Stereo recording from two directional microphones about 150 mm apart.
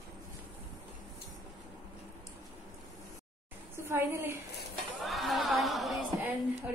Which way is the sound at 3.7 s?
15° right (ahead or behind).